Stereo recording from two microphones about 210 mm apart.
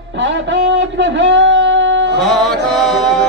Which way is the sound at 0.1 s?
60° right (ahead or behind).